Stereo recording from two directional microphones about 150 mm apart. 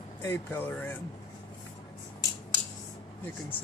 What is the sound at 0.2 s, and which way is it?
Speech, 15° left (ahead or behind).